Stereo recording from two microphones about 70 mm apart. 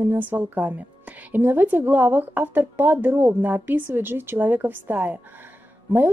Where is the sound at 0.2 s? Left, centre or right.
Right.